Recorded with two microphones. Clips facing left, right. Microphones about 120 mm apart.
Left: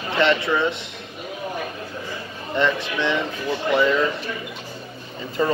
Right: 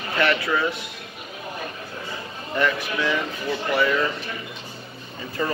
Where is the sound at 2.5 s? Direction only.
25° left (ahead or behind).